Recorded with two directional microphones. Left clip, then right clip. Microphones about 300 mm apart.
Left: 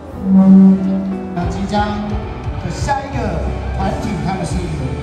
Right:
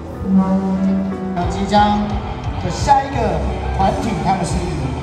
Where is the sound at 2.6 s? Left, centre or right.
Right.